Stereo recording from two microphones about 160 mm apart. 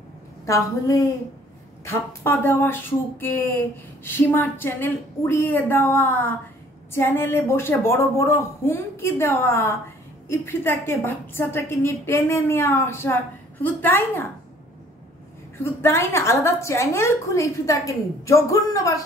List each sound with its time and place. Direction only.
0.5 s a woman's voice: 20° left (ahead or behind)
15.5 s speech: 15° left (ahead or behind)